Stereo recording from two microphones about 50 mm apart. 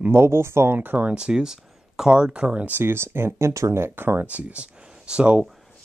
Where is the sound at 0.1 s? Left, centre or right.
Right.